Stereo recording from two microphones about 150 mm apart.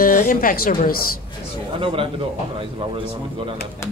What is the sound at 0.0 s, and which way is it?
A man's voice, 70° left (ahead or behind).